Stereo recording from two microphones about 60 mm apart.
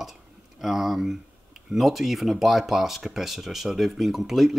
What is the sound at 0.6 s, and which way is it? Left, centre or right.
Speech, centre.